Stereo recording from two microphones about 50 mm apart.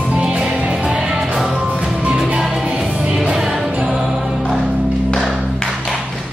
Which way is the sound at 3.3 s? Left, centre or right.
Centre.